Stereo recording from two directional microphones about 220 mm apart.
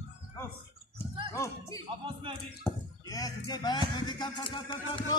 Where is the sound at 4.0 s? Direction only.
20° left (ahead or behind).